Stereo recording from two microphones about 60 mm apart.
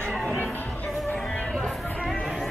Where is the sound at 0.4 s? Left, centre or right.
Left.